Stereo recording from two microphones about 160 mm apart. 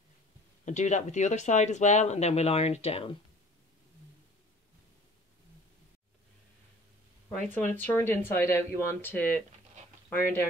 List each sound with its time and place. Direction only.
0.7 s speech: 50° left (ahead or behind)
7.4 s speech: 10° left (ahead or behind)